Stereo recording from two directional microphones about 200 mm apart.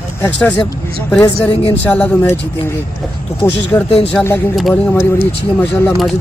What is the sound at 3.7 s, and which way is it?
Speech, 15° left (ahead or behind).